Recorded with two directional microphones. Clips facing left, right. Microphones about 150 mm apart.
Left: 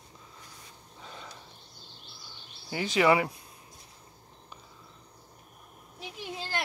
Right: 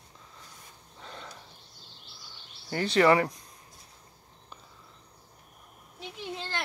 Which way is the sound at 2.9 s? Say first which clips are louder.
Right 2 dB; 10° left (ahead or behind).